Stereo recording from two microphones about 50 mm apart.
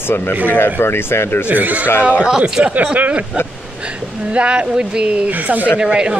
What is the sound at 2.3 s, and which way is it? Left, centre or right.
Speech, centre.